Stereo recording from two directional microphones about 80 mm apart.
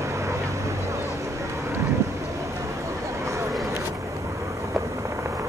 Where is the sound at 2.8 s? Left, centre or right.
Right.